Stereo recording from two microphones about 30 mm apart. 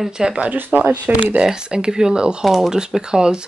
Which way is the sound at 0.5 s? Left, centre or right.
Right.